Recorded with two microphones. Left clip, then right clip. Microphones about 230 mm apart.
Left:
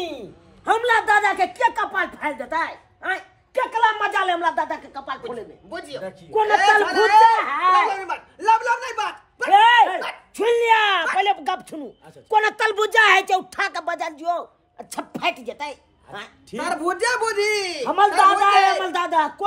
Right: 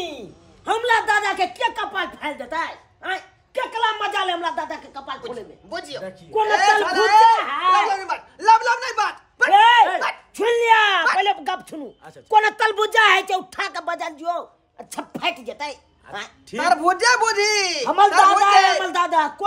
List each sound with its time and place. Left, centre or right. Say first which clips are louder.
0.7 s a woman's voice: left 1 dB; centre
9.5 s a woman's voice: even; centre
16.5 s speech: right 6 dB; right
17.8 s a woman's voice: right 1 dB; centre